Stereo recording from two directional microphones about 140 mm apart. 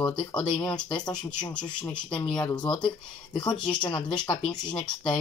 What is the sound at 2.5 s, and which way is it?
Speech, 30° left (ahead or behind).